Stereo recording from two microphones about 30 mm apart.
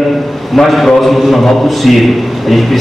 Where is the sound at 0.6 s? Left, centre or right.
Centre.